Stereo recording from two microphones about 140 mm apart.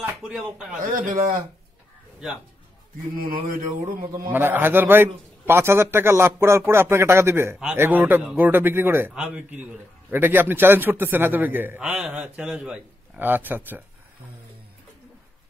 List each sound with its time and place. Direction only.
0.2 s speech: 5° right (ahead or behind)
0.7 s mantra: 85° right
3.2 s mantra: 90° right
4.3 s a man's voice: 15° right (ahead or behind)